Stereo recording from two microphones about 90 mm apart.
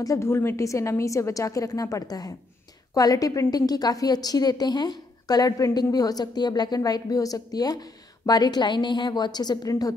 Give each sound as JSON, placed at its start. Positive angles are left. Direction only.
{"t": 0.0, "sound": "a woman's voice", "side_deg": 35}